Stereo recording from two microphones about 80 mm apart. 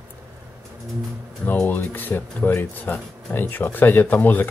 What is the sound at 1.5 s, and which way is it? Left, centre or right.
Speech, left.